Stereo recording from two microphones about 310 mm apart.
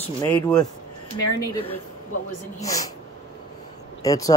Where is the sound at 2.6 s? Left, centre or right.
Centre.